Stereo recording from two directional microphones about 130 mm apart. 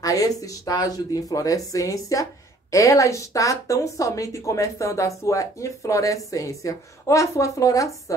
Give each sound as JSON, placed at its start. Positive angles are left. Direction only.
{"t": 0.0, "sound": "speech", "side_deg": 25}